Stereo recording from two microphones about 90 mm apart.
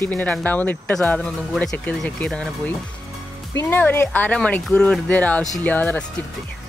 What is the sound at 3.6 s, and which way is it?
Speech, 20° left (ahead or behind).